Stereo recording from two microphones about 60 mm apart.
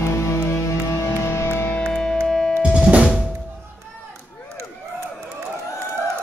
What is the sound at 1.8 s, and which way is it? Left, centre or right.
Music, centre.